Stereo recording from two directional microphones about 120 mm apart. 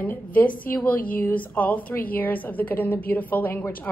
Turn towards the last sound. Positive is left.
turn(degrees=15)  # may be behind; listen again after turning